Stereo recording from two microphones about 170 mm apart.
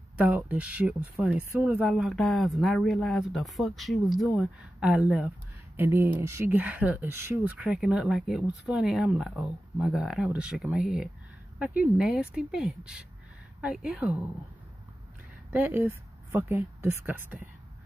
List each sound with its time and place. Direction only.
0.2 s a woman's voice: 10° right (ahead or behind)
15.5 s a woman's voice: 10° right (ahead or behind)